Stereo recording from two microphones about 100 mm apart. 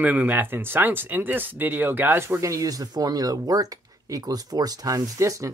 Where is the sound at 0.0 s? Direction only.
15° right (ahead or behind).